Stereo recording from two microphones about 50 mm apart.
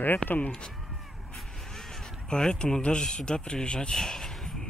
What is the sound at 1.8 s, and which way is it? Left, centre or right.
Speech, centre.